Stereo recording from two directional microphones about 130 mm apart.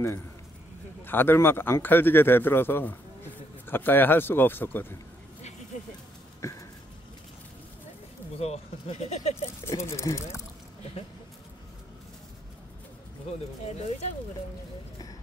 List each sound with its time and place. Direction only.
1.0 s a man's voice: 15° left (ahead or behind)
6.4 s a sound: 20° left (ahead or behind)
8.4 s speech: 55° left (ahead or behind)
9.7 s speech: 20° left (ahead or behind)
13.3 s speech: 55° left (ahead or behind)